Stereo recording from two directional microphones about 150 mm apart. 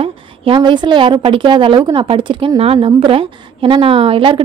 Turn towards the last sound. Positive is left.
turn(degrees=-40)  # may be behind; listen again after turning